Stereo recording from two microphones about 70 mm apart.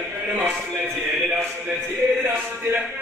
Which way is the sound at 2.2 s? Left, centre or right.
Right.